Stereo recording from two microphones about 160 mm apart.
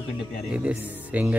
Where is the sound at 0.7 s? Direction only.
10° right (ahead or behind).